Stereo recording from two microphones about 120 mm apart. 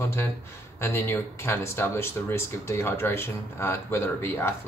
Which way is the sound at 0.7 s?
20° left (ahead or behind).